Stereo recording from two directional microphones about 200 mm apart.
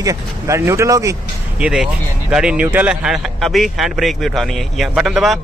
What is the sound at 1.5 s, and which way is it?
Speech, 5° right (ahead or behind).